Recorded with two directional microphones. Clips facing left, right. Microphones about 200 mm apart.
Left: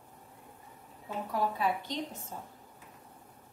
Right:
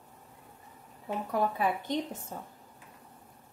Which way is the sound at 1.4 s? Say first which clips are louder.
Right 1 dB; 50° right (ahead or behind).